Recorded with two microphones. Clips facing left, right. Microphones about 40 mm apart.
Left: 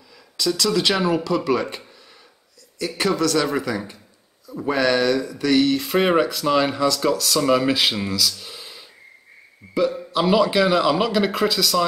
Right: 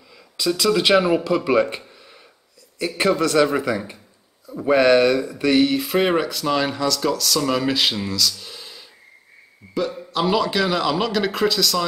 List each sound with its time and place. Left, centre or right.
0.4 s speech: centre
3.0 s speech: right
5.8 s speech: centre